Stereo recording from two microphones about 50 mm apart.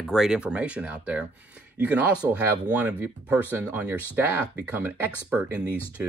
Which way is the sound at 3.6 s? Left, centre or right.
Right.